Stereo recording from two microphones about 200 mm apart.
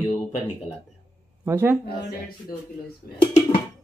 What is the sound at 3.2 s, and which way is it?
Speech, 25° left (ahead or behind).